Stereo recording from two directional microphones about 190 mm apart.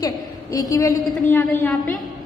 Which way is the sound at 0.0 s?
20° left (ahead or behind).